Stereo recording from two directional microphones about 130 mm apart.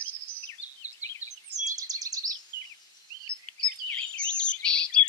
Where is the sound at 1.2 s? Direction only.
65° right (ahead or behind).